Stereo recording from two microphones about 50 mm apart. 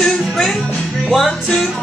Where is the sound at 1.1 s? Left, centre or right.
Centre.